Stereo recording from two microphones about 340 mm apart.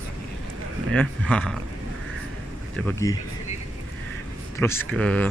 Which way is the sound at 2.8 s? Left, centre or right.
Centre.